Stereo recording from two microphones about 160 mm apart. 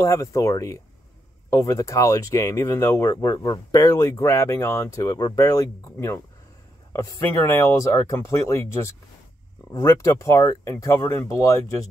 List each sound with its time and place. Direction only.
0.0 s speech: 20° left (ahead or behind)